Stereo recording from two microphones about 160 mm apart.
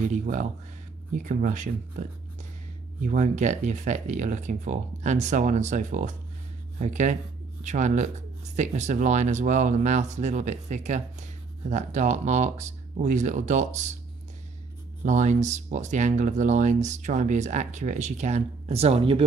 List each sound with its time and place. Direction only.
0.1 s speech: 55° right (ahead or behind)
15.0 s speech: 50° right (ahead or behind)